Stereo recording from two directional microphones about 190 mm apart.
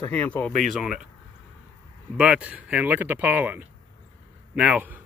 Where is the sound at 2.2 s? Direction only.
5° right (ahead or behind).